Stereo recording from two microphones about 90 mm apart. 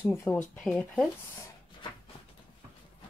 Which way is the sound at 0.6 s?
10° left (ahead or behind).